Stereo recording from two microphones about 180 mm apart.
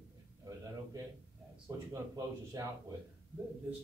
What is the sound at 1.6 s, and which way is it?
Speech, 20° right (ahead or behind).